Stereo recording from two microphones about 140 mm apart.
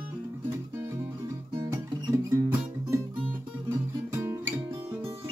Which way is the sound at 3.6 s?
20° right (ahead or behind).